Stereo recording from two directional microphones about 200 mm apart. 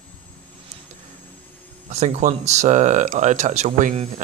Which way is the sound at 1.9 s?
35° right (ahead or behind).